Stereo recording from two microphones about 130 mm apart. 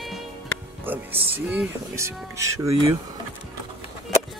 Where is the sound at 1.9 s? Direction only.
20° right (ahead or behind).